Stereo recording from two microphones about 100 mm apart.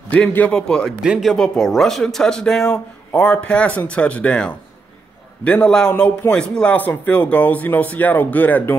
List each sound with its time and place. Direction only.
0.1 s speech: 15° left (ahead or behind)
1.0 s speech: 10° right (ahead or behind)
1.3 s speech: 5° left (ahead or behind)